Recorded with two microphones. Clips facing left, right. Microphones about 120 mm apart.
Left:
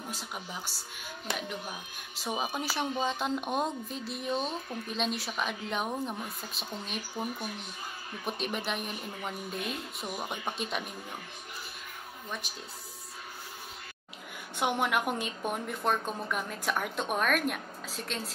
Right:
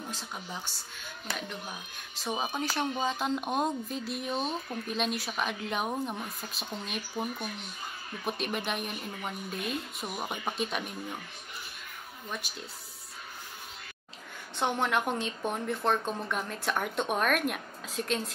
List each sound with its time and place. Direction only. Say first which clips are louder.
0.1 s speech: even; 10° left (ahead or behind)
1.3 s speech: left 2 dB; 20° left (ahead or behind)
2.2 s speech: right 1 dB; 5° left (ahead or behind)
8.3 s speech: right 1 dB; centre (ahead or behind)
12.3 s speech: right 1 dB; centre (ahead or behind)
14.6 s speech: even; 10° left (ahead or behind)